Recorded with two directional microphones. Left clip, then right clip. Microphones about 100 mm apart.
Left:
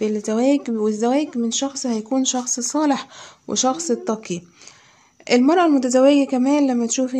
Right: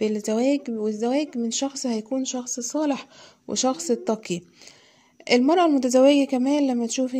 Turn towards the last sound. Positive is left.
turn(degrees=-20)  # may be behind; listen again after turning